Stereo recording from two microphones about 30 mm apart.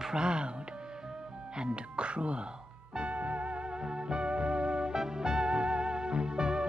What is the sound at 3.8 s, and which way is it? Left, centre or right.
Music, right.